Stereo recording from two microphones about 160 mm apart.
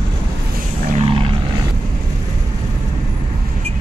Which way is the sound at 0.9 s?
35° right (ahead or behind).